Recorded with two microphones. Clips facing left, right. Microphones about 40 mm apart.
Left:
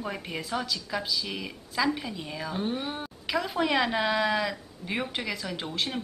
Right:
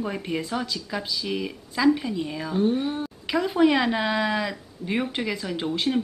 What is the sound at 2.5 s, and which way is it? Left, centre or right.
Speech, centre.